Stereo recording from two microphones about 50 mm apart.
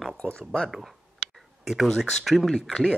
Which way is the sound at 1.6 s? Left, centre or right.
Centre.